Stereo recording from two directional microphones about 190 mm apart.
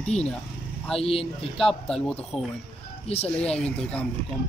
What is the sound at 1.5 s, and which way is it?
Speech, 5° left (ahead or behind).